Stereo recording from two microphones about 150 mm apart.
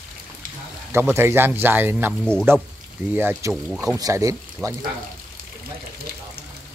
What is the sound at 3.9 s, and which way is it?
Speech, 20° right (ahead or behind).